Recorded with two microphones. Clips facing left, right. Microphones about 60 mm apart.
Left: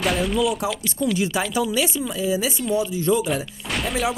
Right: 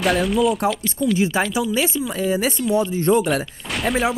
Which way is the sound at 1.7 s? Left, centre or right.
Right.